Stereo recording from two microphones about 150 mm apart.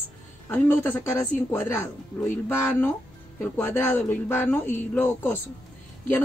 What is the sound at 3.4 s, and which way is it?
Speech, 15° left (ahead or behind).